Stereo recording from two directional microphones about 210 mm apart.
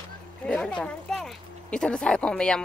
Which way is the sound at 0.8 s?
Centre (ahead or behind).